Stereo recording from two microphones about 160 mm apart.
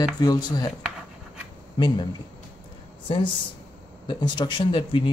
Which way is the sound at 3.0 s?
35° left (ahead or behind).